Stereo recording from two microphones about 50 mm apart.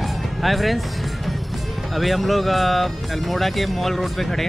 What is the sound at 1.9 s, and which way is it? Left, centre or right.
Speech, centre.